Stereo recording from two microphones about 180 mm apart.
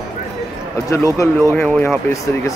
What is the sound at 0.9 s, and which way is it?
Speech, 15° left (ahead or behind).